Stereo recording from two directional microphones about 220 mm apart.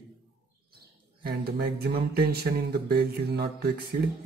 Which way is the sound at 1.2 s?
45° right (ahead or behind).